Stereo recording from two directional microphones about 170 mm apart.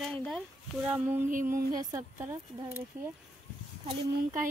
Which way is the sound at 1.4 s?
20° right (ahead or behind).